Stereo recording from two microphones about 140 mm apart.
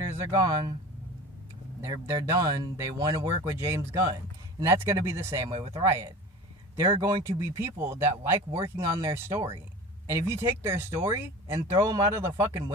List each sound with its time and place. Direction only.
0.1 s speech: 25° right (ahead or behind)
1.9 s speech: 30° right (ahead or behind)
5.5 s speech: 40° right (ahead or behind)
5.9 s speech: 20° right (ahead or behind)